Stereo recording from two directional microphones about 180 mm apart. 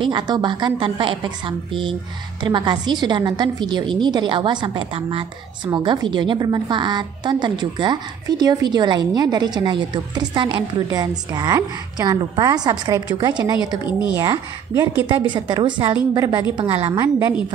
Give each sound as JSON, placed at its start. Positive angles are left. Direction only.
{"t": 0.0, "sound": "a woman's voice", "side_deg": -25}
{"t": 16.5, "sound": "a woman's voice", "side_deg": -30}
{"t": 16.9, "sound": "a woman's voice", "side_deg": -15}